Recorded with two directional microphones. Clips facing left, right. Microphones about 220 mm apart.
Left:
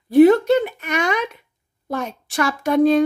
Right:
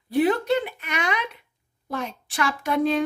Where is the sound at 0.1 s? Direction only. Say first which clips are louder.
Left 9 dB; 45° left (ahead or behind).